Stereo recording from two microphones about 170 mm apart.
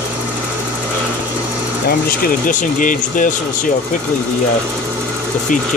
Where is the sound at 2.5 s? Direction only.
50° left (ahead or behind).